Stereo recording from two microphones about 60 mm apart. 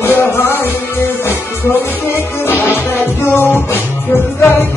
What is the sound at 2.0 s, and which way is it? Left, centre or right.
Music, left.